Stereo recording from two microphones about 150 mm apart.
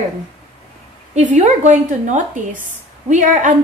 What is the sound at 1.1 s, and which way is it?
A woman's voice, 50° right (ahead or behind).